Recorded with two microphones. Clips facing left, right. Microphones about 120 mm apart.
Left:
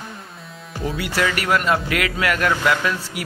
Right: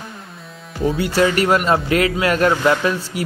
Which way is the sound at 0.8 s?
30° right (ahead or behind).